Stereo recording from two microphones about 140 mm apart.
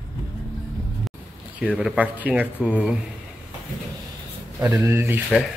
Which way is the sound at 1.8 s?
10° right (ahead or behind).